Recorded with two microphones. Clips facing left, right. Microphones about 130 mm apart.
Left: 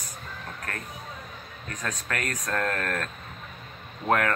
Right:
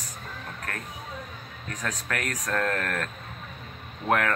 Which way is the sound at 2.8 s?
15° left (ahead or behind).